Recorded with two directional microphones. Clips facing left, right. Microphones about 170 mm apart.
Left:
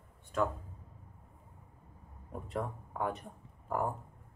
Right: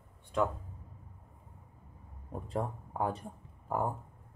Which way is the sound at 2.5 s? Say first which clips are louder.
Right 2 dB; 30° right (ahead or behind).